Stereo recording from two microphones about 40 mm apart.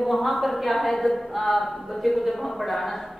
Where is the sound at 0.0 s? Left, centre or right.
Centre.